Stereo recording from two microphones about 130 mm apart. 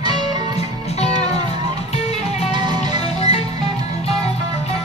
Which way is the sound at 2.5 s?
35° right (ahead or behind).